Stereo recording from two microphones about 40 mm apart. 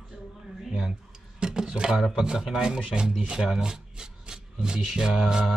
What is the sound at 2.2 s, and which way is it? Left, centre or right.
Speech, centre.